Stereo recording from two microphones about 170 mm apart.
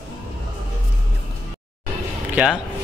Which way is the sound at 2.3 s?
5° right (ahead or behind).